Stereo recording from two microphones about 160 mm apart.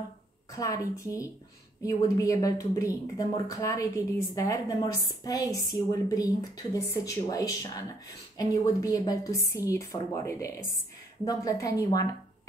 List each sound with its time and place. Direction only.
0.6 s a woman's voice: 20° left (ahead or behind)